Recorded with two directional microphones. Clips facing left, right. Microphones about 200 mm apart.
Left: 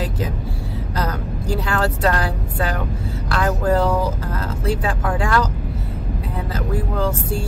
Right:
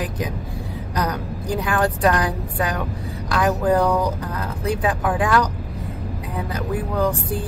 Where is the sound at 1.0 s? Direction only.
15° right (ahead or behind).